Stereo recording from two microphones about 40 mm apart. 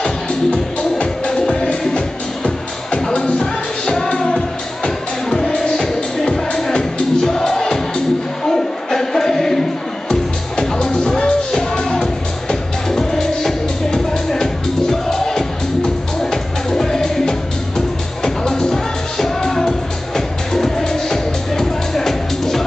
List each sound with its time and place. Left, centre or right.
0.5 s music: left
1.3 s music: left
8.5 s a sound: centre
10.0 s music: left
12.9 s music: centre